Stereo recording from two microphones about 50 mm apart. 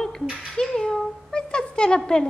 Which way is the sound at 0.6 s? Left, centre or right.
Centre.